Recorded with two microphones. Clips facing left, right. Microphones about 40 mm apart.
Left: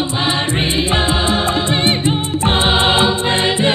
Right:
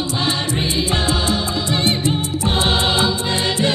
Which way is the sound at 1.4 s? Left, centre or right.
Left.